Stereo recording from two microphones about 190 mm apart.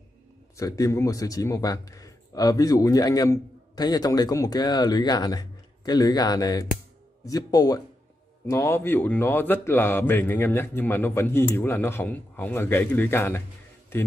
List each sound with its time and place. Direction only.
0.6 s speech: 15° left (ahead or behind)